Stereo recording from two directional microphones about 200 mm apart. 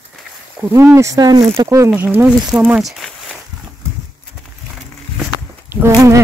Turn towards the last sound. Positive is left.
turn(degrees=-15)  # may be behind; listen again after turning